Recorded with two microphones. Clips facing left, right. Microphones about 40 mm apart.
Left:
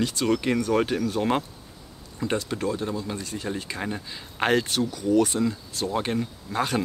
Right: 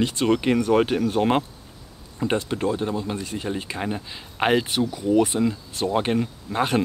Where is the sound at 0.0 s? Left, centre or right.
Right.